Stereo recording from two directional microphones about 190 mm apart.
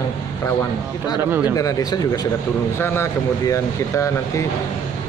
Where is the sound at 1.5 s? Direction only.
20° left (ahead or behind).